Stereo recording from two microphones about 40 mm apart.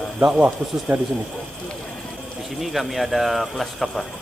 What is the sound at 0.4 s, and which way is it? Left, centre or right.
Speech, right.